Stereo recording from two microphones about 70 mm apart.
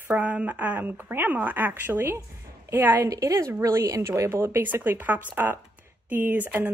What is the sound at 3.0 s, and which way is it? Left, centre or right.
Speech, right.